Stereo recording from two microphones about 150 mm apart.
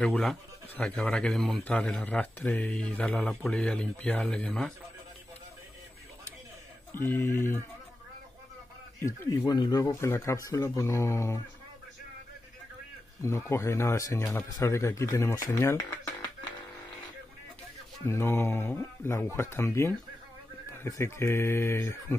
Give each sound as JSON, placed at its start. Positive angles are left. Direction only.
{"t": 0.0, "sound": "a man's voice", "side_deg": 5}
{"t": 6.9, "sound": "a man's voice", "side_deg": 15}
{"t": 9.5, "sound": "speech", "side_deg": 25}
{"t": 13.2, "sound": "speech", "side_deg": 20}
{"t": 18.0, "sound": "a man's voice", "side_deg": 15}